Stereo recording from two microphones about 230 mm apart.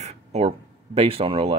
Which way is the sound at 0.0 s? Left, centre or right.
Right.